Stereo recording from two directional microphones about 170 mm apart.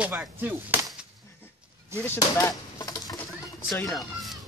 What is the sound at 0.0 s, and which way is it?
Chop, 10° right (ahead or behind).